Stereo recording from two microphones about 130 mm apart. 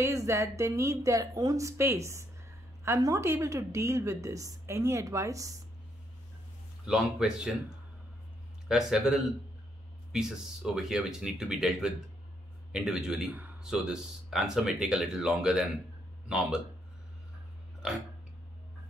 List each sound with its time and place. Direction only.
0.0 s a woman's voice: 25° right (ahead or behind)
6.9 s a man's voice: 5° right (ahead or behind)
8.6 s a man's voice: 5° right (ahead or behind)
17.8 s a sound: 5° right (ahead or behind)